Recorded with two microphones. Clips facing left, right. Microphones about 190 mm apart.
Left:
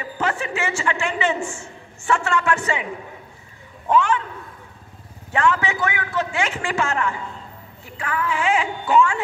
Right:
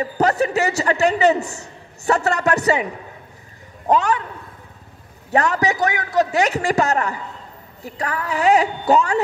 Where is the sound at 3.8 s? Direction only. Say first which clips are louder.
Right 1 dB; 40° right (ahead or behind).